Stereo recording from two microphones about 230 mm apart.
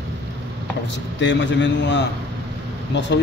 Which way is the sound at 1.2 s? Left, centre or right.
Left.